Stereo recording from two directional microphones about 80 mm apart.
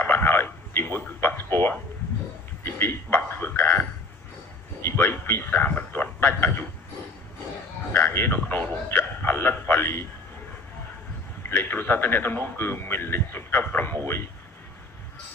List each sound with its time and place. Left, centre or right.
0.0 s radio: left
2.6 s a sound: left
4.8 s a man's voice: left
8.1 s a man's voice: left
11.4 s a man's voice: left